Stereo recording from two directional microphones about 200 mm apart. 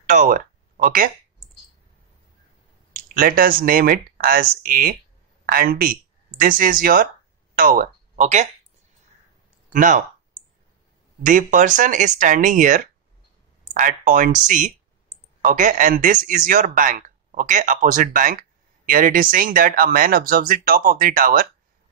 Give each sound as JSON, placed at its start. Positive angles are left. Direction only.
{"t": 0.0, "sound": "speech", "side_deg": -40}
{"t": 2.9, "sound": "speech", "side_deg": -45}
{"t": 9.7, "sound": "speech", "side_deg": -40}
{"t": 11.2, "sound": "speech", "side_deg": -40}